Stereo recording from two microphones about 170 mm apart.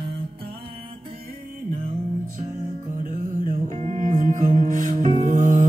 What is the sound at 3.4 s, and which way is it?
Music, 45° right (ahead or behind).